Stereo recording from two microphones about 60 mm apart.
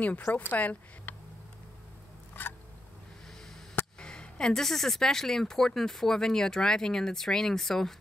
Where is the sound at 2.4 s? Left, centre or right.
Left.